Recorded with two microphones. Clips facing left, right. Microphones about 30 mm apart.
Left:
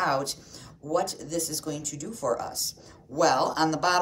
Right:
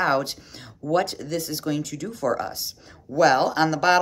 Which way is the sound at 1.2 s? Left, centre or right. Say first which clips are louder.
Right 4 dB; right.